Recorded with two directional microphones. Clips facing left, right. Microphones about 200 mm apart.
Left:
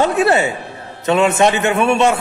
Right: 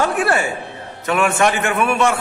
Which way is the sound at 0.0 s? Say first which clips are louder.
Left 4 dB; 20° left (ahead or behind).